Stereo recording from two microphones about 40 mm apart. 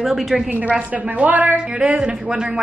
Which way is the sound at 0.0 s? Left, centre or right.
Centre.